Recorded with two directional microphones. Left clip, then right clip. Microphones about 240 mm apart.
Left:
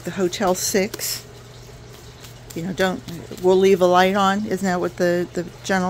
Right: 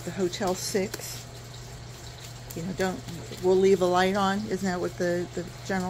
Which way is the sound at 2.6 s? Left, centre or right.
Left.